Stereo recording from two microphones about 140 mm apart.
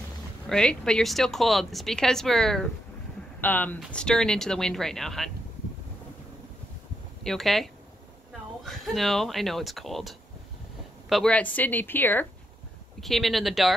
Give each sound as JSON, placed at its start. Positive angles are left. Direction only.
{"t": 0.5, "sound": "a woman's voice", "side_deg": 5}
{"t": 3.3, "sound": "a woman's voice", "side_deg": 15}
{"t": 7.2, "sound": "a woman's voice", "side_deg": 0}
{"t": 11.3, "sound": "a woman's voice", "side_deg": 10}
{"t": 13.0, "sound": "a woman's voice", "side_deg": 0}